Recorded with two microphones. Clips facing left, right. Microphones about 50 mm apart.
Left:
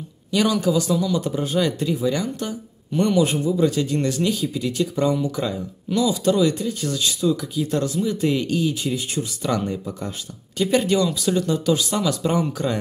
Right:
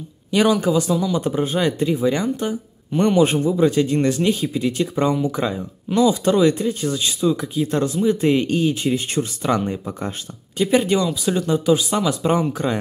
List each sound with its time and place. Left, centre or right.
0.3 s speech: right
10.9 s speech: right